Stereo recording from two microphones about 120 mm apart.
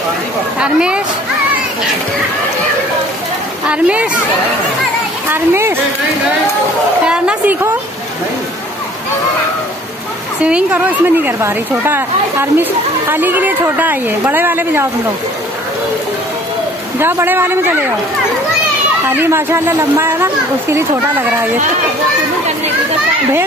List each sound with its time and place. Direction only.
0.6 s speech: 10° right (ahead or behind)
3.6 s speech: 10° right (ahead or behind)
5.3 s speech: 20° right (ahead or behind)
7.1 s a sound: 10° right (ahead or behind)
10.4 s a woman's voice: 10° right (ahead or behind)
17.0 s speech: 20° right (ahead or behind)
19.0 s speech: 20° right (ahead or behind)